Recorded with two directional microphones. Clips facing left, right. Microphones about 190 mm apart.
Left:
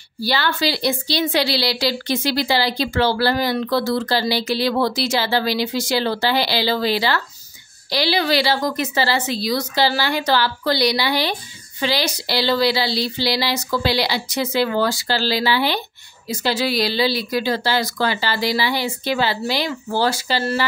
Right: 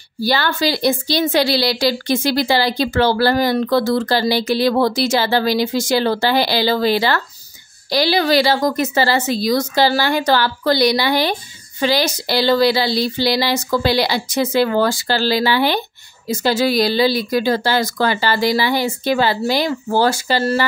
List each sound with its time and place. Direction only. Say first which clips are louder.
0.2 s a woman's voice: right 3 dB; 45° right (ahead or behind)